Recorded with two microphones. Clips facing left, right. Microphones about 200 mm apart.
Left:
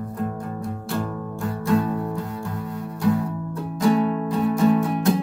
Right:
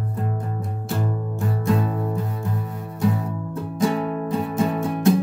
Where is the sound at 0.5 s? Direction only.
20° right (ahead or behind).